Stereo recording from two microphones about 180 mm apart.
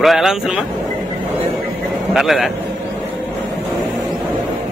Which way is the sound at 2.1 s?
Centre (ahead or behind).